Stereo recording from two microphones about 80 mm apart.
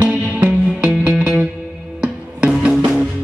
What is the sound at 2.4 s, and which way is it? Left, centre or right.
Music, centre.